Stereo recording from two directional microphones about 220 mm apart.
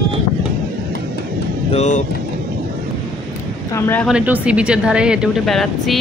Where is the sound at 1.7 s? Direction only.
30° left (ahead or behind).